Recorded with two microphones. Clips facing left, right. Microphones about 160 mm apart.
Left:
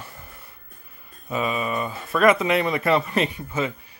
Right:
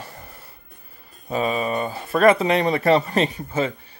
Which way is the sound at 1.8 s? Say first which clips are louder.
Right 2 dB; 30° right (ahead or behind).